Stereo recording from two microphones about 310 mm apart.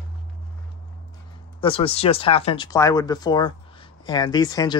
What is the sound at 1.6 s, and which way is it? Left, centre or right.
Speech, centre.